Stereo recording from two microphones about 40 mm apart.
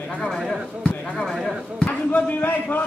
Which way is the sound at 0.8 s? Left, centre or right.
Left.